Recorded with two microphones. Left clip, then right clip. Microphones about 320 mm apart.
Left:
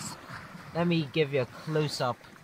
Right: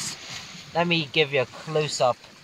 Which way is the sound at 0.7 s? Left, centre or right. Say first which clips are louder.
Right 6 dB; centre.